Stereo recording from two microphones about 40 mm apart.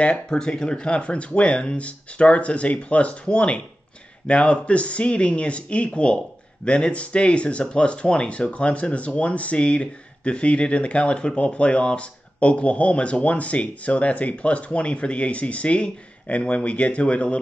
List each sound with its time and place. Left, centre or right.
0.3 s speech: centre